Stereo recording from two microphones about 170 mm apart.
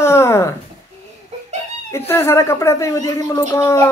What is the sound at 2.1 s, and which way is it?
Speech, 15° left (ahead or behind).